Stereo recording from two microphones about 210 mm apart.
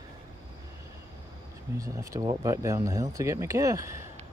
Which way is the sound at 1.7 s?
15° right (ahead or behind).